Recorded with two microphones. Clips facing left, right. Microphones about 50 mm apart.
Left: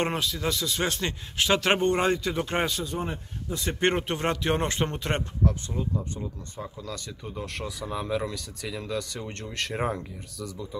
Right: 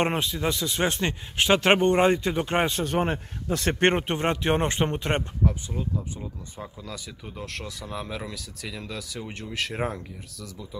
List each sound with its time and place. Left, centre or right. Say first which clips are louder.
0.0 s a man's voice: right 2 dB; right
2.8 s speech: right 6 dB; right
3.9 s a man's voice: right 2 dB; right
5.4 s speech: even; centre